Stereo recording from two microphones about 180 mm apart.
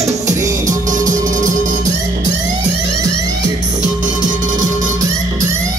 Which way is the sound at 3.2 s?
20° right (ahead or behind).